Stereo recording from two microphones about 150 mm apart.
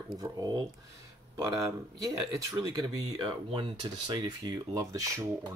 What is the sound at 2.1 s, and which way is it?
Speech, 25° right (ahead or behind).